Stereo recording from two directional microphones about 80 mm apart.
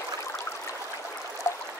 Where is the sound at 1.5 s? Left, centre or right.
Left.